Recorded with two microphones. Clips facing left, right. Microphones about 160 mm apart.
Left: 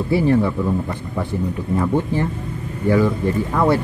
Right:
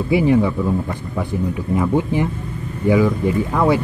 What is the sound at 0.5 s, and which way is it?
Speech, 5° right (ahead or behind).